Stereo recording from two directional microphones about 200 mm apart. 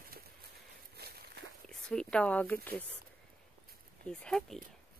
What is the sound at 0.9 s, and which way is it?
Walk, 50° right (ahead or behind).